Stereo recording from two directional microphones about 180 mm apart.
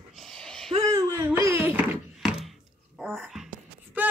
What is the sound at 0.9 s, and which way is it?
Wail, 15° right (ahead or behind).